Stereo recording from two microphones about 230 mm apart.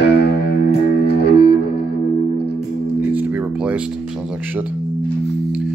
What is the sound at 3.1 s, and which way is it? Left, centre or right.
Music, centre.